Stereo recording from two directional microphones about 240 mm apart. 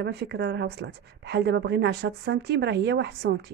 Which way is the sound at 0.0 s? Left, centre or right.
Right.